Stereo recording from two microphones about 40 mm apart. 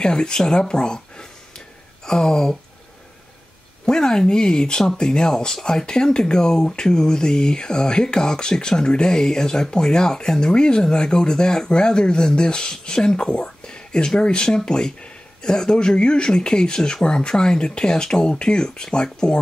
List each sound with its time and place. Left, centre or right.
0.0 s speech: centre
2.0 s a sound: centre
3.8 s speech: centre